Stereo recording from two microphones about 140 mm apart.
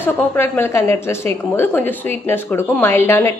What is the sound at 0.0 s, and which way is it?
A woman's voice, 15° left (ahead or behind).